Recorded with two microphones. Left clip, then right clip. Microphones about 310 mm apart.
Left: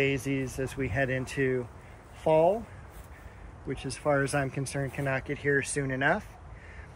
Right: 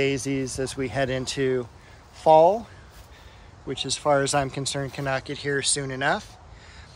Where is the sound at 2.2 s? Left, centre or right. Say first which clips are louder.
Right 8 dB; centre.